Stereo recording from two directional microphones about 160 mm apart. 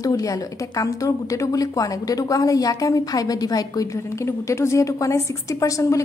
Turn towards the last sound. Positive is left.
turn(degrees=20)  # may be behind; listen again after turning